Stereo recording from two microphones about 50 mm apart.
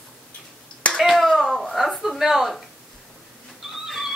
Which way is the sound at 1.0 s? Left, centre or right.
Centre.